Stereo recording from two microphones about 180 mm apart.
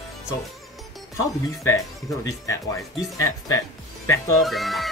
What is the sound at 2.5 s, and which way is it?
Speech, 15° left (ahead or behind).